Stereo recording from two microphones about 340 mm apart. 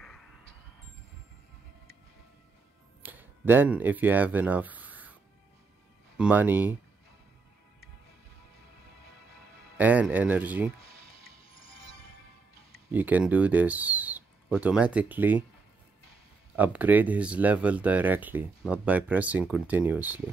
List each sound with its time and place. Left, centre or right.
0.0 s a sound: centre
3.0 s speech: centre
6.1 s speech: centre
9.8 s speech: centre
10.8 s music: centre
12.9 s speech: centre
16.5 s speech: centre